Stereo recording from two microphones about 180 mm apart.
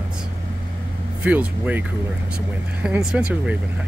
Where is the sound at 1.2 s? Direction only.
10° right (ahead or behind).